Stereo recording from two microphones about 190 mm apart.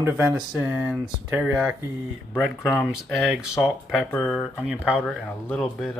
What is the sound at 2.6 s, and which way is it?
Speech, 15° left (ahead or behind).